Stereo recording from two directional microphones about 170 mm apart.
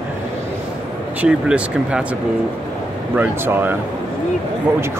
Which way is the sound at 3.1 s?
10° right (ahead or behind).